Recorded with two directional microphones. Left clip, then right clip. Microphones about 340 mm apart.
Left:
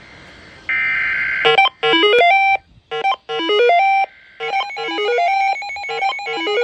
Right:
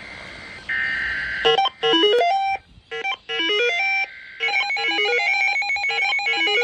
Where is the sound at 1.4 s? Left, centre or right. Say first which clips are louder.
Left 4 dB; centre.